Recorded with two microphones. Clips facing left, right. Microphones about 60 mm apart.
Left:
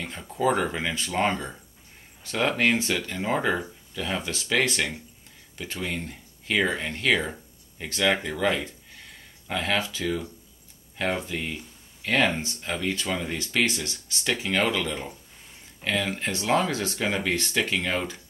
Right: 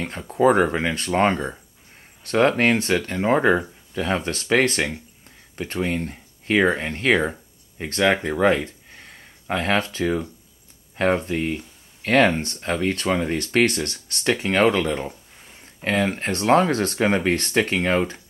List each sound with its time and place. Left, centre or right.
0.0 s speech: right